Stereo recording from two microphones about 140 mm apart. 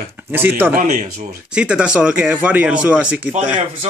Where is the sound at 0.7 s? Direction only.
55° right (ahead or behind).